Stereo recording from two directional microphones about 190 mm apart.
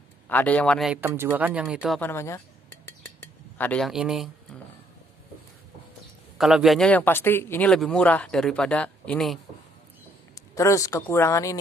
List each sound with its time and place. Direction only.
0.3 s speech: 10° left (ahead or behind)
1.0 s speech: 15° right (ahead or behind)
2.0 s cutlery: 10° left (ahead or behind)
3.5 s speech: 5° left (ahead or behind)
6.3 s speech: centre (ahead or behind)
10.5 s speech: 15° left (ahead or behind)